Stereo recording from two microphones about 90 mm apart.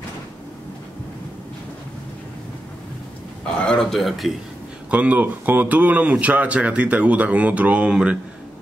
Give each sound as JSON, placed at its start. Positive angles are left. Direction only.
{"t": 3.6, "sound": "speech", "side_deg": 5}
{"t": 4.9, "sound": "speech", "side_deg": -20}